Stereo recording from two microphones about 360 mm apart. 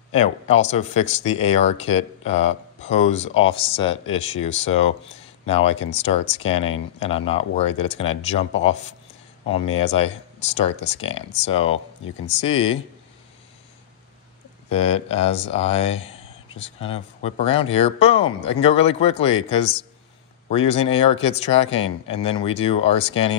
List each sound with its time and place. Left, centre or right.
0.1 s speech: centre
9.8 s speech: centre
11.7 s speech: left
12.4 s speech: centre
14.7 s speech: centre